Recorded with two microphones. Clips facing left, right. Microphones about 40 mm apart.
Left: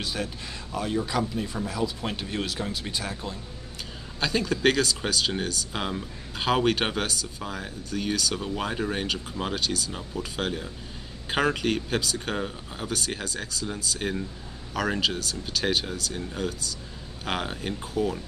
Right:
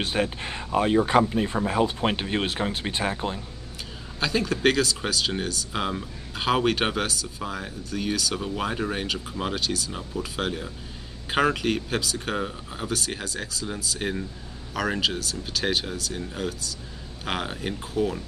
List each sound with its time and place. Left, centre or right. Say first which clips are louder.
0.0 s speech: right 6 dB; right
4.2 s speech: right 1 dB; centre